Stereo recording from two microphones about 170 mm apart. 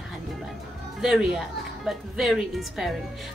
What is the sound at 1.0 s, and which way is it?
A woman's voice, 5° right (ahead or behind).